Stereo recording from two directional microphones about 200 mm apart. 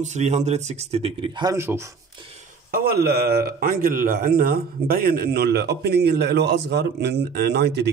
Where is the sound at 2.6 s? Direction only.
50° right (ahead or behind).